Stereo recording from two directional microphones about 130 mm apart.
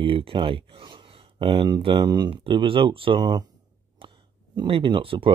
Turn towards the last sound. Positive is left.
turn(degrees=-40)  # may be behind; listen again after turning